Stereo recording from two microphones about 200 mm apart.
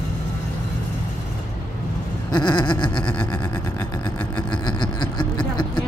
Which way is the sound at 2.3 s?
20° left (ahead or behind).